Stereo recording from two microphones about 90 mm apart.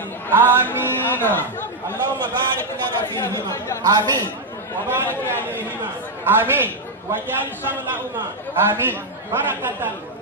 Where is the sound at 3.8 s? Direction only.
50° right (ahead or behind).